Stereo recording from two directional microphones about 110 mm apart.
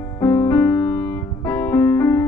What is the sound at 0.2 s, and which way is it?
Music, 30° left (ahead or behind).